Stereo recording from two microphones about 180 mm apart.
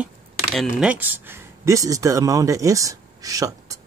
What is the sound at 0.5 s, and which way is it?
Speech, centre (ahead or behind).